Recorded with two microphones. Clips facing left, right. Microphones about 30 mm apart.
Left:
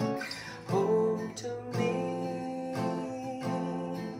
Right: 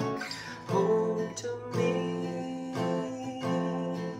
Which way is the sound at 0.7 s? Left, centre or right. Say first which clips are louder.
Right 1 dB; right.